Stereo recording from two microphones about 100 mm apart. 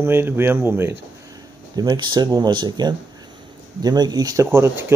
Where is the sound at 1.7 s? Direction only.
45° right (ahead or behind).